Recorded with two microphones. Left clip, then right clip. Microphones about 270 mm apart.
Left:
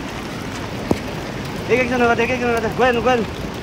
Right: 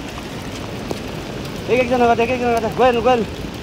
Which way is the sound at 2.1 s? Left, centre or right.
Right.